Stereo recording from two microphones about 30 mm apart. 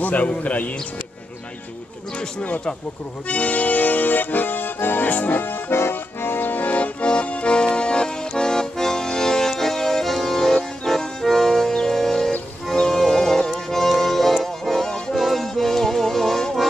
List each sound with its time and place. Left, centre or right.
0.0 s a man's voice: left
3.3 s accordion: left
6.4 s accordion: left
7.1 s accordion: left; by 11.0 s centre
11.2 s music: centre
15.4 s music: centre